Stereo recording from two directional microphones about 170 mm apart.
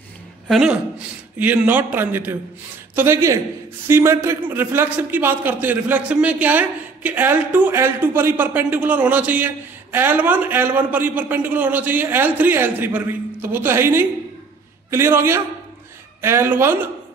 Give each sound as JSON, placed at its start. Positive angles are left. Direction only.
{"t": 0.5, "sound": "a man's voice", "side_deg": -5}